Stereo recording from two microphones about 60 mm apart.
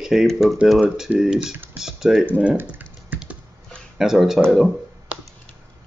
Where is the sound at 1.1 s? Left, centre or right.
Centre.